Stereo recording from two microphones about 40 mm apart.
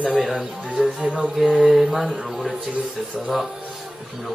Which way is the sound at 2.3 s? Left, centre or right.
Centre.